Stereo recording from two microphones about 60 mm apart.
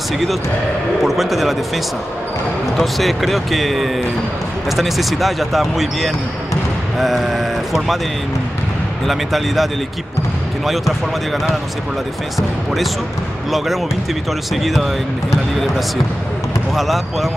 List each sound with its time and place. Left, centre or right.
1.0 s speech: centre
2.8 s speech: centre
9.0 s speech: centre
12.4 s speech: centre
14.5 s speech: centre
16.7 s speech: centre